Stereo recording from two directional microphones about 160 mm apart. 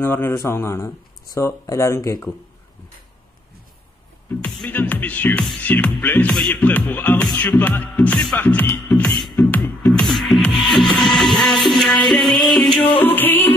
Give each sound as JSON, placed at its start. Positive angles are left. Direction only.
{"t": 0.0, "sound": "music", "side_deg": 15}
{"t": 4.4, "sound": "music", "side_deg": 5}
{"t": 12.7, "sound": "music", "side_deg": 30}
{"t": 13.0, "sound": "music", "side_deg": 10}